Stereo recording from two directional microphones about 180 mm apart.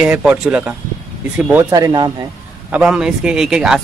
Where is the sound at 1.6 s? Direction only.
20° right (ahead or behind).